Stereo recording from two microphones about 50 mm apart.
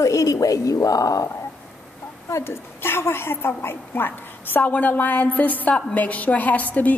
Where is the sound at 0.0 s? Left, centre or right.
Left.